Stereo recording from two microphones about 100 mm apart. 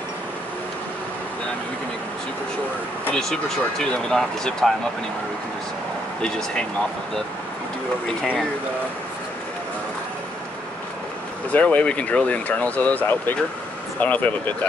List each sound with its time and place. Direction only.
3.2 s speech: 5° left (ahead or behind)
11.5 s speech: 10° left (ahead or behind)